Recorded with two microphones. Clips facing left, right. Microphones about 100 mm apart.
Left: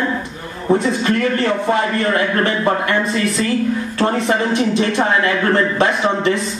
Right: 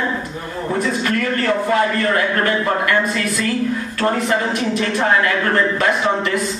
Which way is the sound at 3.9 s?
25° left (ahead or behind).